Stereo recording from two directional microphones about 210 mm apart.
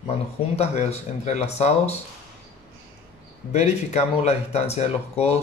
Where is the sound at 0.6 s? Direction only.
30° left (ahead or behind).